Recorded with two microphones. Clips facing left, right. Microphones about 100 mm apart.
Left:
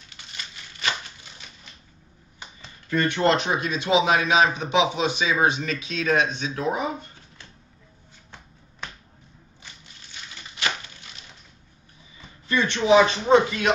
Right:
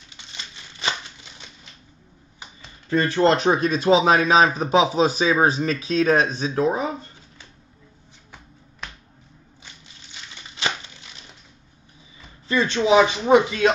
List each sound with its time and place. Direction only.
0.3 s crumpling: 25° right (ahead or behind)
2.9 s speech: 25° right (ahead or behind)
12.4 s speech: 25° right (ahead or behind)